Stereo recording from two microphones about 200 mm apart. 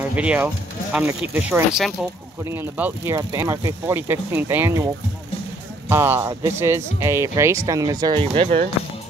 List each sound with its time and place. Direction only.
0.1 s speech: 5° right (ahead or behind)
5.9 s speech: 10° right (ahead or behind)